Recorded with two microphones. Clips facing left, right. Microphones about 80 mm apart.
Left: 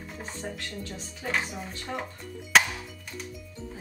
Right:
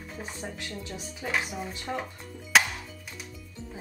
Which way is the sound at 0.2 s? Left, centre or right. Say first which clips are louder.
Left 1 dB; centre.